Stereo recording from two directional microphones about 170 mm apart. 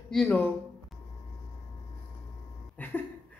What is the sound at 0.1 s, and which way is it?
Speech, centre (ahead or behind).